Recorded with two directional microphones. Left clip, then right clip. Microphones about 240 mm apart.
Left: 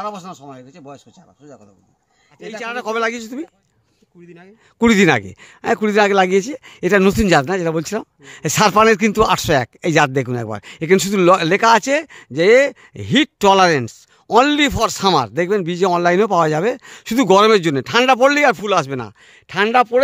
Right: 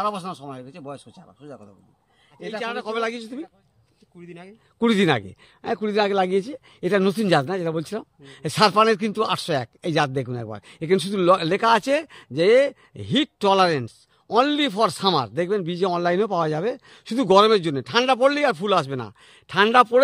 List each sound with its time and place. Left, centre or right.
0.0 s a man's voice: centre
2.6 s speech: left
4.3 s speech: centre
4.7 s speech: left
19.5 s speech: centre